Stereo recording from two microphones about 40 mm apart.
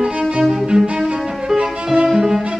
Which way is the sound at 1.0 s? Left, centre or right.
Centre.